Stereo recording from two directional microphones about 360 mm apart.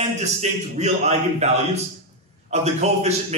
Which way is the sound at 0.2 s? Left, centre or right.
Centre.